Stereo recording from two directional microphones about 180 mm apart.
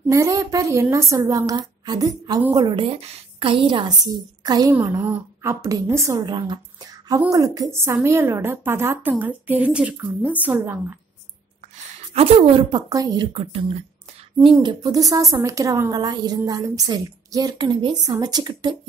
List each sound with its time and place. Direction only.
0.1 s a woman's voice: 15° right (ahead or behind)
11.7 s a woman's voice: 35° right (ahead or behind)